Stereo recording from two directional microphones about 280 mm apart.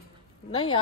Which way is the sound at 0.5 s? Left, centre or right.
Centre.